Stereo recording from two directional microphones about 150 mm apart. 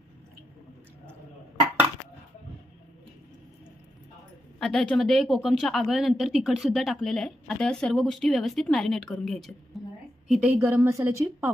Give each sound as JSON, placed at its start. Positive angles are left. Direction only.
{"t": 4.6, "sound": "a woman's voice", "side_deg": 5}
{"t": 10.5, "sound": "a woman's voice", "side_deg": -15}